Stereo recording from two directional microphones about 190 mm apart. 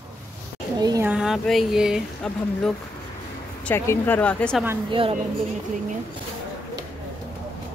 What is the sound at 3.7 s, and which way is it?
Speech, 10° left (ahead or behind).